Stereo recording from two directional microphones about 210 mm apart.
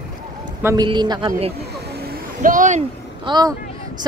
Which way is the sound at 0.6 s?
10° right (ahead or behind).